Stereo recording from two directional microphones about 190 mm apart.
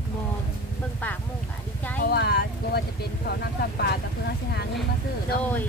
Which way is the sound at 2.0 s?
55° left (ahead or behind).